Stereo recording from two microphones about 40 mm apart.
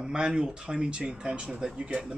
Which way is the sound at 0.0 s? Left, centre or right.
Right.